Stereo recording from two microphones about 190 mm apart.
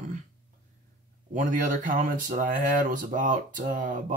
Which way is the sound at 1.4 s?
45° right (ahead or behind).